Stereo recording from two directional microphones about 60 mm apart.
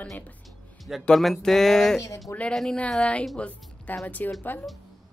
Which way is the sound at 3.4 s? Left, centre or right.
Left.